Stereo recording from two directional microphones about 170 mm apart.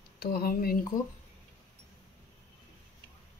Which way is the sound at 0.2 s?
60° left (ahead or behind).